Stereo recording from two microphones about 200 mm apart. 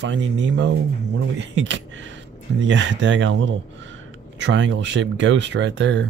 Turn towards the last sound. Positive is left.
turn(degrees=-65)  # may be behind; listen again after turning